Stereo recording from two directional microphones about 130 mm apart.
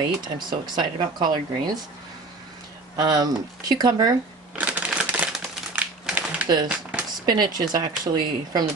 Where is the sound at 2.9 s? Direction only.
30° right (ahead or behind).